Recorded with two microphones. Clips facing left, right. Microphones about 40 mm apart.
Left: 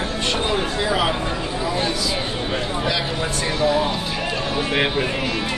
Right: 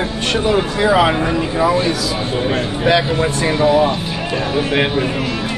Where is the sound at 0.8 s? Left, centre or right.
Right.